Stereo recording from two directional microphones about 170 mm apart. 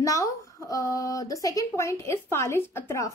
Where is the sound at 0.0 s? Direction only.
20° left (ahead or behind).